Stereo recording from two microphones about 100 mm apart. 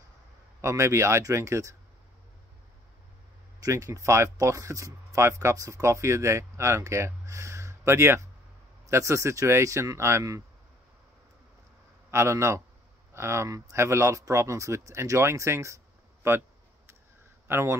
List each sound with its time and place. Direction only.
0.6 s speech: 25° right (ahead or behind)
3.6 s speech: 35° right (ahead or behind)
12.1 s speech: 25° right (ahead or behind)